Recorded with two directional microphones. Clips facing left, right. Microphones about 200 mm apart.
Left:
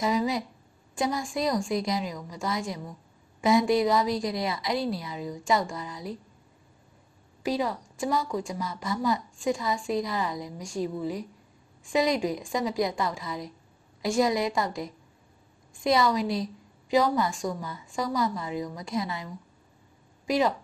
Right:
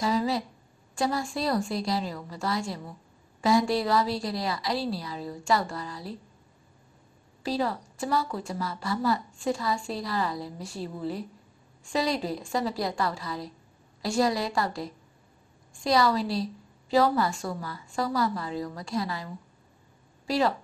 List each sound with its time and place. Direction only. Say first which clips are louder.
0.0 s a woman's voice: even; 15° left (ahead or behind)
7.4 s a woman's voice: left 1 dB; 15° left (ahead or behind)
20.2 s speech: left 1 dB; 15° left (ahead or behind)